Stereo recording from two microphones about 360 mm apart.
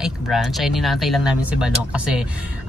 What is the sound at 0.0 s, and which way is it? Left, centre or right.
Speech, centre.